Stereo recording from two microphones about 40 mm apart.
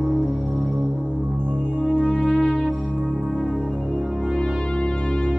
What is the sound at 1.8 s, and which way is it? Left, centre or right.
Music, left.